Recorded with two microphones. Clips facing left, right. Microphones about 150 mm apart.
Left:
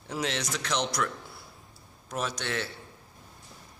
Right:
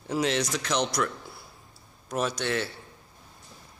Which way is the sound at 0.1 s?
5° right (ahead or behind).